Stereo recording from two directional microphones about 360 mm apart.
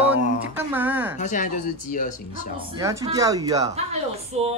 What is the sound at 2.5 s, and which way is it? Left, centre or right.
Speech, centre.